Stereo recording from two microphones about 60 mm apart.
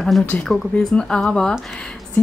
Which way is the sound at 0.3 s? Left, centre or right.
Left.